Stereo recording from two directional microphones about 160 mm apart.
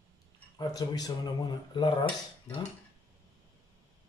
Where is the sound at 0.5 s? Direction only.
25° left (ahead or behind).